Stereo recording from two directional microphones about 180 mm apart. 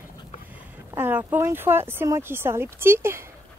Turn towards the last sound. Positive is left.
turn(degrees=-15)  # may be behind; listen again after turning